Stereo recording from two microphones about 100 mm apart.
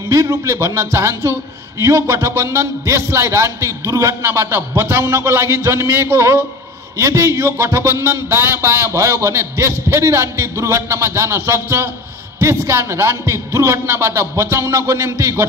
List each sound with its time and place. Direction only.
0.1 s a man's voice: 30° right (ahead or behind)